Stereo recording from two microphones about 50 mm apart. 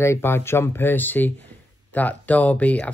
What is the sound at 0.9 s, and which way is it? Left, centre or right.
Speech, left.